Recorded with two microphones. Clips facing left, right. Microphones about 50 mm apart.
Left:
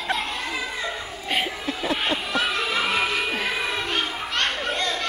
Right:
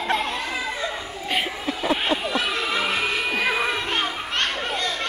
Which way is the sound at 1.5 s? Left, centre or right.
Centre.